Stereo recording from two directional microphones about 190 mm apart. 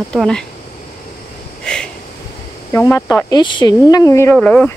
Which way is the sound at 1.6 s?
5° left (ahead or behind).